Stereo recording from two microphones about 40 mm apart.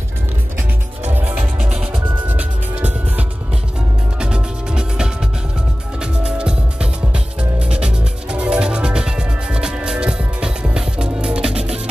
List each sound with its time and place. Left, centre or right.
2.2 s music: right
4.2 s music: right